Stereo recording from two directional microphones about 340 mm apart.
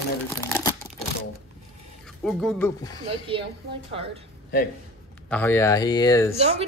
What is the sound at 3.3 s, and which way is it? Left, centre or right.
Speech, centre.